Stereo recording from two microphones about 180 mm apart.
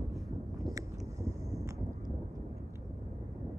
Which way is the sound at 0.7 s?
20° right (ahead or behind).